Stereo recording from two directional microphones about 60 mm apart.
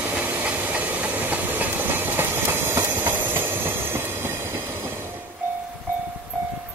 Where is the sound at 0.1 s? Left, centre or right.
Right.